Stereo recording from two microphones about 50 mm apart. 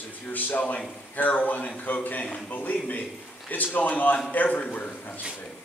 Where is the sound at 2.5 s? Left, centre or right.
Left.